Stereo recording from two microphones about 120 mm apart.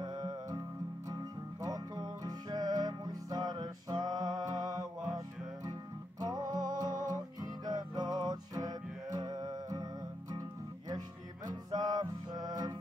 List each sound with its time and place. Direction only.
0.0 s music: 35° right (ahead or behind)
11.4 s music: 35° right (ahead or behind)